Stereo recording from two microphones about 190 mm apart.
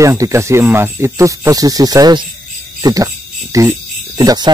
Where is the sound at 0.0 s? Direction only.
15° right (ahead or behind).